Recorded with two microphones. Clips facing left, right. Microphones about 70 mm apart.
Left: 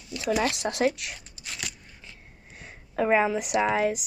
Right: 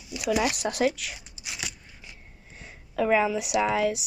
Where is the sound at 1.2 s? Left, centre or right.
Centre.